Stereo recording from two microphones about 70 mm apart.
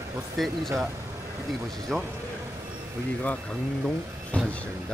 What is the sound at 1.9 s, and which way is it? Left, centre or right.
Speech, centre.